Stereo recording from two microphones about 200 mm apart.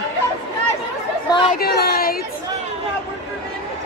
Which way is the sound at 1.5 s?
50° left (ahead or behind).